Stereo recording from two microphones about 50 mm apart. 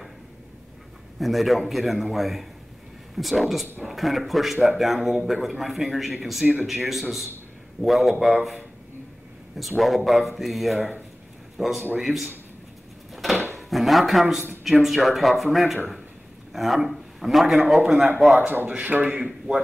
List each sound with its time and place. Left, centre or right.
1.2 s speech: centre
9.6 s speech: centre
13.1 s dishes: centre
13.6 s a sound: centre
14.2 s speech: centre
18.4 s a man's voice: right
19.1 s speech: centre